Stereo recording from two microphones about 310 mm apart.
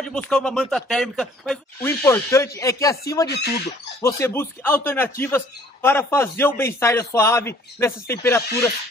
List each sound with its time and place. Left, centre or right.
0.0 s speech: centre
3.3 s speech: left
4.0 s speech: centre